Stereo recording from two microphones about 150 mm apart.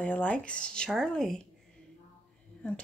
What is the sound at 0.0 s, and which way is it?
Speech, 10° left (ahead or behind).